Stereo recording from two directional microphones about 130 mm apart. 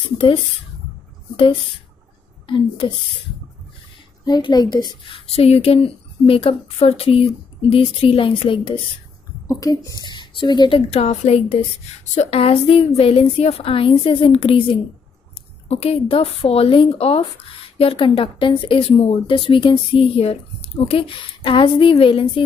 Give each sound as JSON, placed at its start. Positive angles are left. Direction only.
{"t": 1.3, "sound": "a woman's voice", "side_deg": 45}
{"t": 4.2, "sound": "speech", "side_deg": 35}
{"t": 9.5, "sound": "a woman's voice", "side_deg": 25}
{"t": 10.0, "sound": "speech", "side_deg": 35}
{"t": 10.9, "sound": "a woman's voice", "side_deg": 55}